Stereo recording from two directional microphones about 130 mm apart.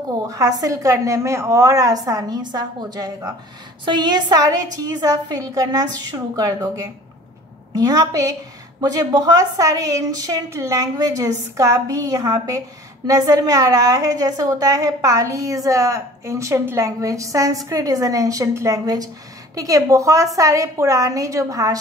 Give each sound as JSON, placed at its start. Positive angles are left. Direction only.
{"t": 0.3, "sound": "a woman's voice", "side_deg": -25}